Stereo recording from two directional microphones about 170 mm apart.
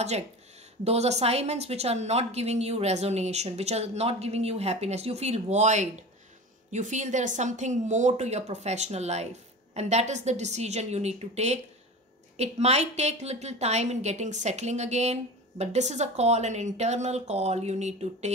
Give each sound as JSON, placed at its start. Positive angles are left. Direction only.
{"t": 0.8, "sound": "a woman's voice", "side_deg": -40}